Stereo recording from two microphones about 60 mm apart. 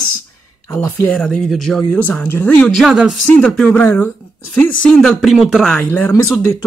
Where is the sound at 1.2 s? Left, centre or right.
Centre.